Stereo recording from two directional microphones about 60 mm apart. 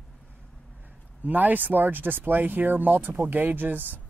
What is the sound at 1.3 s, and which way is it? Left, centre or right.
Speech, right.